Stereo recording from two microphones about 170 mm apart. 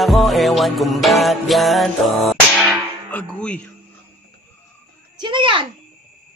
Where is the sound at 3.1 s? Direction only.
5° left (ahead or behind).